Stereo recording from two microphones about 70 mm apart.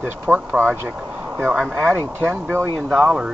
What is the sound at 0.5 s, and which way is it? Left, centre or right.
Speech, right.